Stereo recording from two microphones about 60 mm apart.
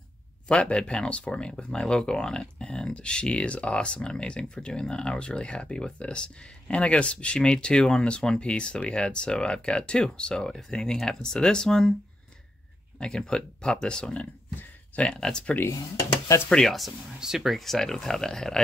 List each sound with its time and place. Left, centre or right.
0.5 s speech: centre
13.0 s speech: centre
17.2 s speech: centre